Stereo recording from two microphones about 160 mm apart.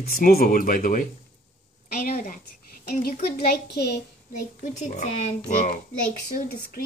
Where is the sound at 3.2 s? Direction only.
90° left.